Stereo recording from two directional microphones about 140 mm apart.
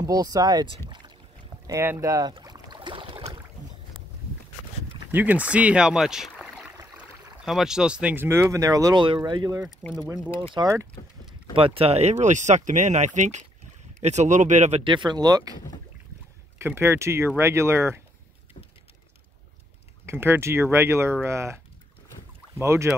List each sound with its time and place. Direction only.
0.0 s speech: 25° right (ahead or behind)
1.7 s speech: 20° right (ahead or behind)
2.3 s boat: 30° right (ahead or behind)
5.1 s speech: 10° right (ahead or behind)
11.5 s speech: 40° right (ahead or behind); by 14.8 s 60° right (ahead or behind)
14.8 s speech: 35° right (ahead or behind)
16.5 s speech: 15° right (ahead or behind)
20.1 s speech: 15° right (ahead or behind)
22.6 s speech: 20° right (ahead or behind)